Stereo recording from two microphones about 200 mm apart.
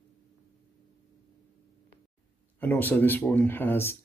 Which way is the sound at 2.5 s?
10° left (ahead or behind).